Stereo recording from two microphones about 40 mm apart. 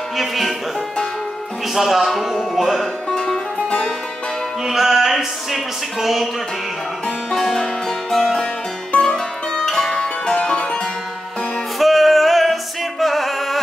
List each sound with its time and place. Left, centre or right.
0.2 s music: centre
1.7 s music: centre
3.1 s music: centre
4.6 s music: centre
7.2 s music: centre; by 10.8 s left
11.8 s music: centre